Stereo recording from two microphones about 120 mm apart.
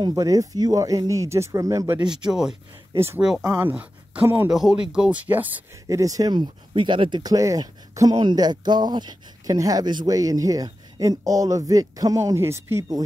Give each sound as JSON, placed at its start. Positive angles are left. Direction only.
{"t": 0.0, "sound": "speech", "side_deg": -30}
{"t": 2.0, "sound": "speech", "side_deg": -5}
{"t": 3.4, "sound": "speech", "side_deg": -20}
{"t": 4.5, "sound": "speech", "side_deg": -5}
{"t": 5.9, "sound": "speech", "side_deg": -30}